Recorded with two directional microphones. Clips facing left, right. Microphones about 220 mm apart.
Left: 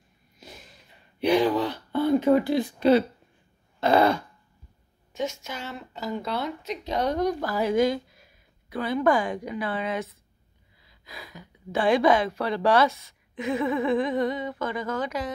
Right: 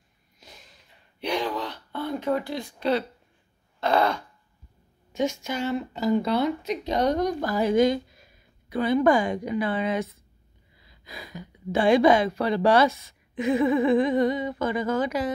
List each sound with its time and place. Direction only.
0.4 s a sound: 5° left (ahead or behind)
3.8 s speech: 5° left (ahead or behind)
11.1 s speech: centre (ahead or behind)